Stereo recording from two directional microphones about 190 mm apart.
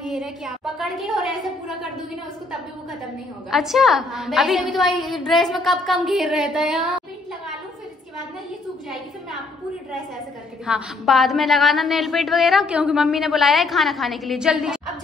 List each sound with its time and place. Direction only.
0.0 s a woman's voice: centre (ahead or behind)
3.4 s a woman's voice: centre (ahead or behind)
10.7 s a woman's voice: centre (ahead or behind)